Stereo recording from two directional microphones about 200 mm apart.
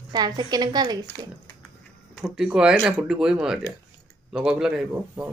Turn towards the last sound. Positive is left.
turn(degrees=-5)  # may be behind; listen again after turning